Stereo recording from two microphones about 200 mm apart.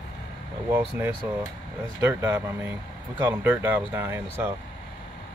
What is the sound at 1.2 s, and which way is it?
Speech, 10° right (ahead or behind).